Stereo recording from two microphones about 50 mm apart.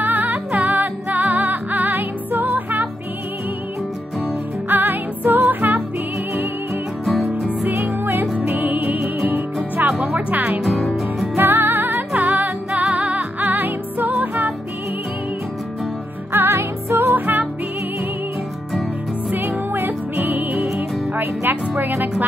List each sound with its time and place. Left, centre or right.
0.0 s music: right
4.6 s music: right
8.0 s music: right
8.5 s music: right
10.6 s music: centre
11.3 s music: right
12.1 s music: right
13.4 s music: right
16.3 s music: right
17.1 s music: right
19.3 s music: right